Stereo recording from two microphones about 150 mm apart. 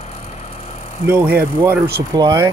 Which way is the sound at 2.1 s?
25° right (ahead or behind).